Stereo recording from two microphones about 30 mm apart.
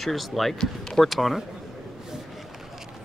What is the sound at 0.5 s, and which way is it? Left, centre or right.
Speech, centre.